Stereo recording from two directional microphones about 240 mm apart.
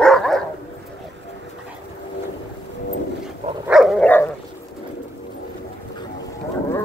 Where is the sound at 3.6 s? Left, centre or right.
Centre.